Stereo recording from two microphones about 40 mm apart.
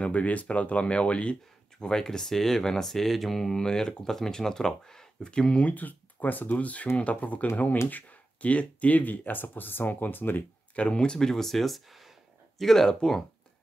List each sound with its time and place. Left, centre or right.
0.0 s speech: left
1.8 s speech: centre
5.6 s speech: left
7.0 s speech: left
10.8 s speech: left